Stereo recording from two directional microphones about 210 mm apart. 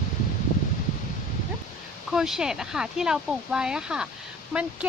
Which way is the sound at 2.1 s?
5° right (ahead or behind).